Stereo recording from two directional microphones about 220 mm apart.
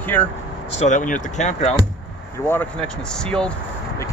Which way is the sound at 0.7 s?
35° left (ahead or behind).